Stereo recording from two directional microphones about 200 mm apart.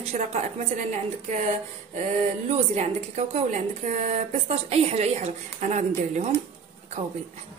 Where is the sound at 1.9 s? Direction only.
35° right (ahead or behind).